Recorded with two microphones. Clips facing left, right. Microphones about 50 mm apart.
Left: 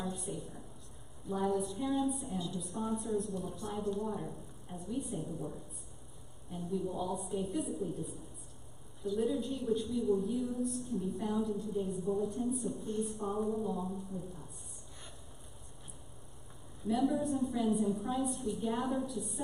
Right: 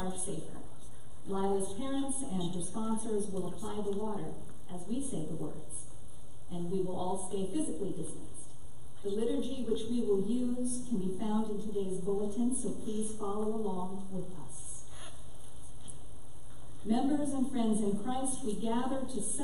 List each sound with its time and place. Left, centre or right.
0.0 s a woman's voice: centre
16.8 s a woman's voice: centre